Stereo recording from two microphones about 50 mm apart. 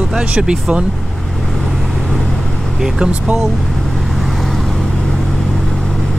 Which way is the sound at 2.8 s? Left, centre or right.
Centre.